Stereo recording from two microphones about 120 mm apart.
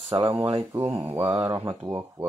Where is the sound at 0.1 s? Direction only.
40° right (ahead or behind).